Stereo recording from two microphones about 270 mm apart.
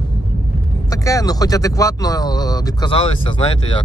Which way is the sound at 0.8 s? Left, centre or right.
Centre.